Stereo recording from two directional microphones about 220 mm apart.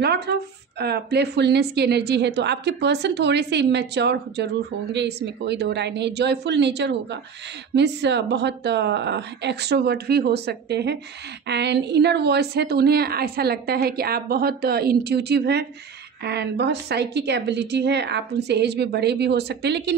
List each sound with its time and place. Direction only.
0.0 s a woman's voice: 50° right (ahead or behind)